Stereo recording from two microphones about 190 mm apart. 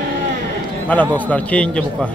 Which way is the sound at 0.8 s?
10° left (ahead or behind).